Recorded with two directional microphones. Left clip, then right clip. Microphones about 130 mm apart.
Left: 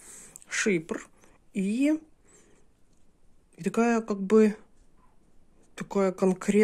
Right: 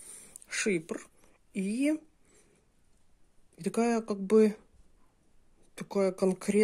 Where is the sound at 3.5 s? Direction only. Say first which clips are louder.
Left 4 dB; 25° right (ahead or behind).